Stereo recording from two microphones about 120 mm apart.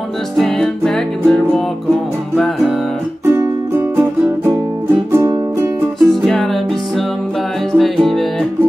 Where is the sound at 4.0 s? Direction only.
20° right (ahead or behind).